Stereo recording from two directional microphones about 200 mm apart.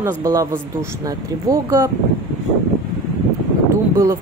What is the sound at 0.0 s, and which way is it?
Speech, 15° right (ahead or behind).